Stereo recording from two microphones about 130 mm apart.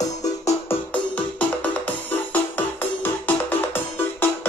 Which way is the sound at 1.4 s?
10° left (ahead or behind).